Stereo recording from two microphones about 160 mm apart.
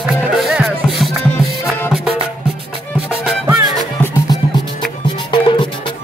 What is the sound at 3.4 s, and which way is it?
Music, 25° right (ahead or behind).